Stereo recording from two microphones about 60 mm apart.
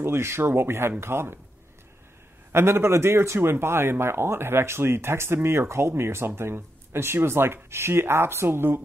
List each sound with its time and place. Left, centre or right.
0.0 s speech: right
2.5 s speech: right